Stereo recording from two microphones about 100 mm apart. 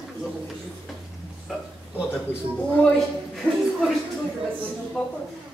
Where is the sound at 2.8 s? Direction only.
Centre (ahead or behind).